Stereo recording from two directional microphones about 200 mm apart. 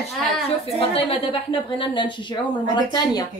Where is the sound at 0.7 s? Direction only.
25° left (ahead or behind).